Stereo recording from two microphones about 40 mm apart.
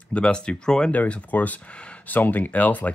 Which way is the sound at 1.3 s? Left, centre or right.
Left.